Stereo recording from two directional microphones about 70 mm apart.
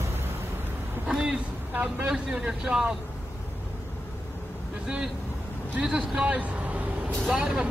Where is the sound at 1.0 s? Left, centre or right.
Centre.